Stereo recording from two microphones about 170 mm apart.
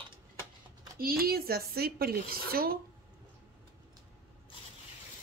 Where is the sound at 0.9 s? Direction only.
60° right (ahead or behind).